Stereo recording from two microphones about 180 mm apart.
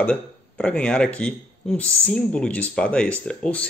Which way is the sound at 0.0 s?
5° left (ahead or behind).